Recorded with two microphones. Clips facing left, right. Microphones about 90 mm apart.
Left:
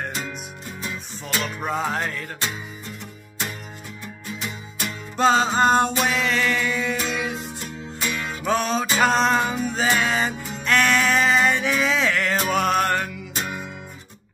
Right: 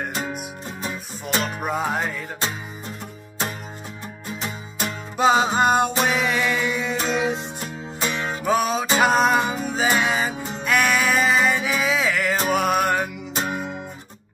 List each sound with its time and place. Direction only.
1.6 s music: 10° right (ahead or behind)
4.4 s music: 40° right (ahead or behind)
5.1 s music: 10° right (ahead or behind); by 8.5 s 35° right (ahead or behind)
8.5 s music: 5° right (ahead or behind)
13.4 s music: 35° right (ahead or behind)